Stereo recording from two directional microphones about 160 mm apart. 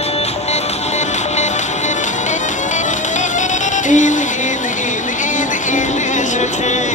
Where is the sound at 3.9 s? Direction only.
50° left (ahead or behind).